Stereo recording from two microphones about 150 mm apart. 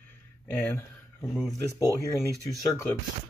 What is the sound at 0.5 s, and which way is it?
Speech, 10° left (ahead or behind).